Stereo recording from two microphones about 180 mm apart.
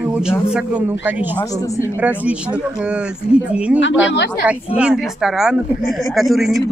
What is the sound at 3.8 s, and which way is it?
Speech, 90° left.